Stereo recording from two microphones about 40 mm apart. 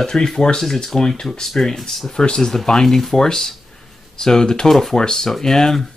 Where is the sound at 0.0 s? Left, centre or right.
Centre.